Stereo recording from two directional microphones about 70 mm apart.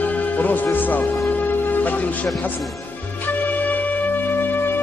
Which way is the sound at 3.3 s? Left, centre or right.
Left.